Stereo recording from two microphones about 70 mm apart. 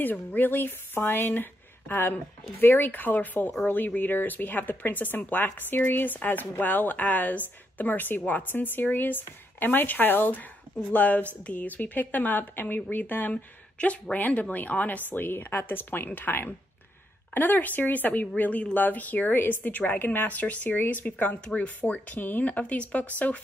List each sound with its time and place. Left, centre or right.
0.0 s speech: left